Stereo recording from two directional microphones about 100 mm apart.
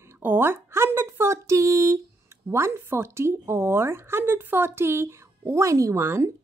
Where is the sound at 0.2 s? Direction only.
20° right (ahead or behind).